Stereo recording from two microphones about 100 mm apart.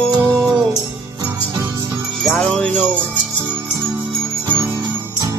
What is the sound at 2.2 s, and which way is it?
Jingle bell, 5° left (ahead or behind).